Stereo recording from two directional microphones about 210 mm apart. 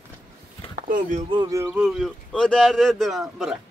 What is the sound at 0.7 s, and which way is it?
Speech, 35° right (ahead or behind).